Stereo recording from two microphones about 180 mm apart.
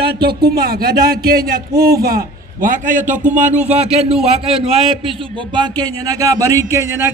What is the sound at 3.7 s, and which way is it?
A man's voice, 35° right (ahead or behind).